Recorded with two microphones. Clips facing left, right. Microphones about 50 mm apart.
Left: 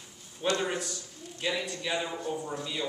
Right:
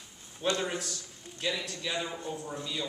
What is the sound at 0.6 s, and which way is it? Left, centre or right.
A man's voice, centre.